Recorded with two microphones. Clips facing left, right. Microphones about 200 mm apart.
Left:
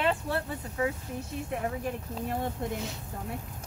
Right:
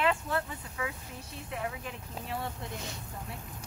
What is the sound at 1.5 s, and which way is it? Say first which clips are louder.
Speech: left 5 dB; 45° left (ahead or behind).